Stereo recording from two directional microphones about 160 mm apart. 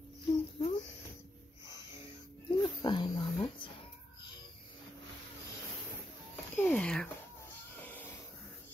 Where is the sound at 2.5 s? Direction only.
30° left (ahead or behind).